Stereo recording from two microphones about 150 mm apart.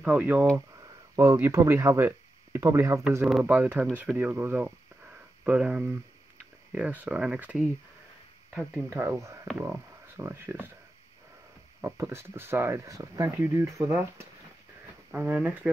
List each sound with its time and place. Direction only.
0.0 s speech: 10° right (ahead or behind)
8.9 s speech: 20° right (ahead or behind)
11.8 s speech: 15° right (ahead or behind)